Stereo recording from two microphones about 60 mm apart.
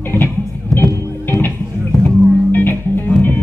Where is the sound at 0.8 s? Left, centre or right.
Left.